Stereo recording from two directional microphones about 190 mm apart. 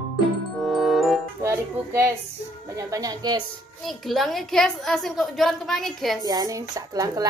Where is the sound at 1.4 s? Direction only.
15° right (ahead or behind).